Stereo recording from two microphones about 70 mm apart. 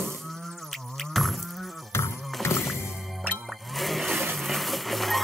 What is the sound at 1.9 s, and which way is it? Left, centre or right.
Music, left.